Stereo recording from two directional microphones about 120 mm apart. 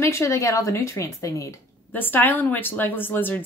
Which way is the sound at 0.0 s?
25° left (ahead or behind).